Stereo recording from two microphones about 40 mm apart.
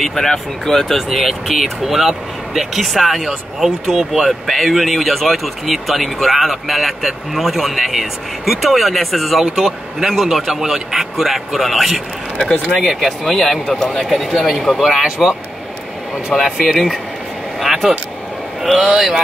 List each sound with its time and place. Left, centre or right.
0.0 s speech: centre
1.5 s speech: centre
4.3 s speech: centre
14.0 s speech: centre
15.0 s a man's voice: centre
16.4 s a man's voice: centre